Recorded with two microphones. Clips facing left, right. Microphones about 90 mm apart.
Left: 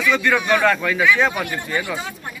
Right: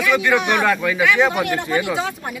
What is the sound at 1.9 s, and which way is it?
Speech, 90° right.